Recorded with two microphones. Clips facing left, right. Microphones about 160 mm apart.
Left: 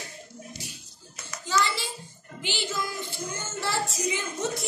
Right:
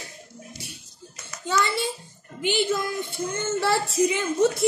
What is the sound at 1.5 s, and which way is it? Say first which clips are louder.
Hands: right 3 dB; 55° right (ahead or behind).